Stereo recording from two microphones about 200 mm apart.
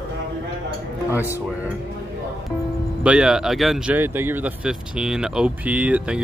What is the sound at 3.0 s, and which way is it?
Speech, 5° right (ahead or behind).